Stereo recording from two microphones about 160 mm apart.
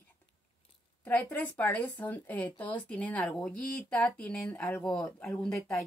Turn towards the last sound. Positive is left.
turn(degrees=5)  # may be behind; listen again after turning